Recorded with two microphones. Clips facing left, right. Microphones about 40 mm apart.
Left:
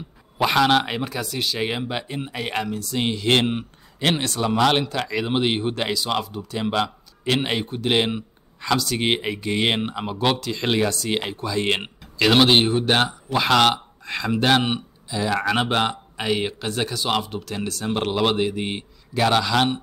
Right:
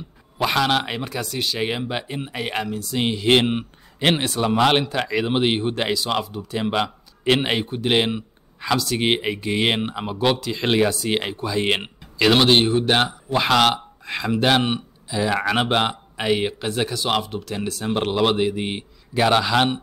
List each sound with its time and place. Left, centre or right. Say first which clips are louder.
0.4 s speech: left 2 dB; centre
7.6 s speech: right 1 dB; centre
15.1 s speech: right 1 dB; centre